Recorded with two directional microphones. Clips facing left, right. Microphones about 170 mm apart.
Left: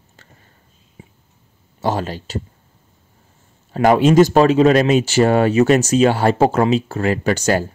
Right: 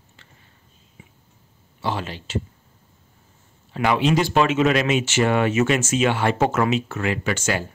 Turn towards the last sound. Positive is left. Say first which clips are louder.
# left 7 dB
turn(degrees=40)  # may be behind; listen again after turning